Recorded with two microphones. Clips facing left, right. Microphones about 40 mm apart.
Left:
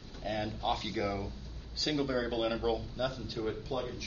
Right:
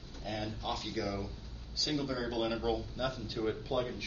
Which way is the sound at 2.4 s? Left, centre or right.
Centre.